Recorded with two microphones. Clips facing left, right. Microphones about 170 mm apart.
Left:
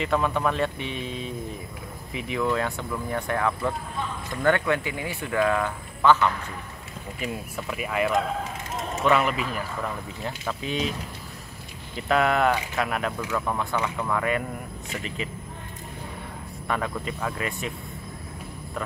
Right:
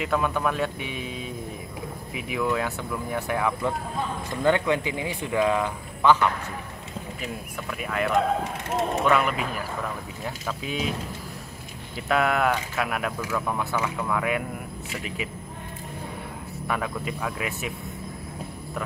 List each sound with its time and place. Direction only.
0.0 s speech: 5° right (ahead or behind)
7.7 s speech: 5° left (ahead or behind)
8.6 s mechanisms: 65° right (ahead or behind)
9.0 s speech: centre (ahead or behind)
12.1 s speech: centre (ahead or behind)
16.6 s speech: 5° right (ahead or behind)